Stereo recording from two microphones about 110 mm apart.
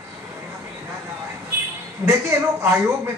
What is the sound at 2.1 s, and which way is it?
A man's voice, 25° right (ahead or behind).